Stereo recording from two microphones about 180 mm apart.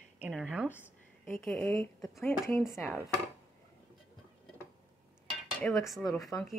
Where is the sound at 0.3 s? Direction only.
5° right (ahead or behind).